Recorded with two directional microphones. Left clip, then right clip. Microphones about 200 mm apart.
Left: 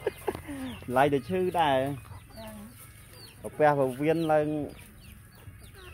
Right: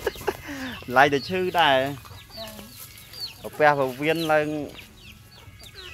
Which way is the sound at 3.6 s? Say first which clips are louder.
Right 4 dB; 10° left (ahead or behind).